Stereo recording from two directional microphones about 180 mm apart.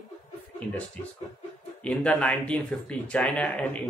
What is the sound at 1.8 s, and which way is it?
Speech, 5° left (ahead or behind).